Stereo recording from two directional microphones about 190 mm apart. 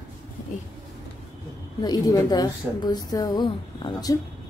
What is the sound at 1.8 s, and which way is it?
A woman's voice, 20° left (ahead or behind).